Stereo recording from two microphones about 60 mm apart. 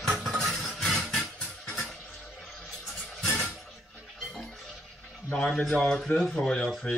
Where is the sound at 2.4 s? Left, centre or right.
Centre.